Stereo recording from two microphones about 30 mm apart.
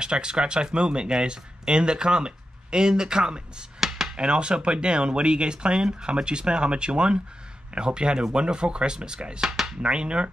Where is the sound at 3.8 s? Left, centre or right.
Centre.